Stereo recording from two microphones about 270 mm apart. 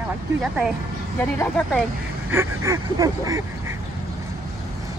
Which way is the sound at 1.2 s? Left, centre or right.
Centre.